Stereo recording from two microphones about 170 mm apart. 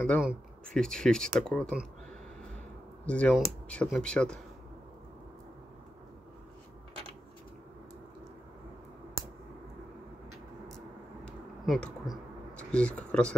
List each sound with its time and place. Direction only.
0.2 s speech: centre (ahead or behind)
3.1 s speech: 5° left (ahead or behind)
11.2 s a sound: 5° left (ahead or behind)